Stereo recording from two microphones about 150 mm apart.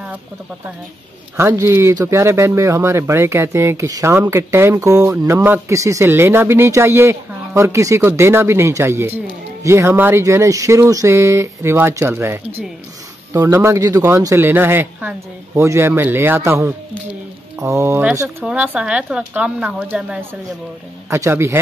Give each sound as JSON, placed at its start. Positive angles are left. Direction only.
{"t": 1.3, "sound": "speech", "side_deg": -15}